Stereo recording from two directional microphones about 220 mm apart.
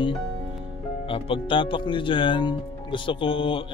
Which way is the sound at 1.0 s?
25° left (ahead or behind).